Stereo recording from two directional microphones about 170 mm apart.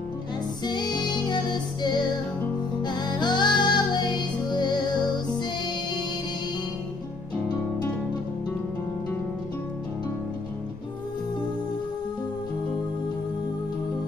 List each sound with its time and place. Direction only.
0.7 s music: 25° left (ahead or behind)